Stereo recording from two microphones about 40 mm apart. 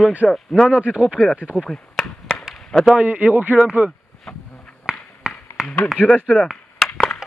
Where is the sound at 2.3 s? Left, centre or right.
Left.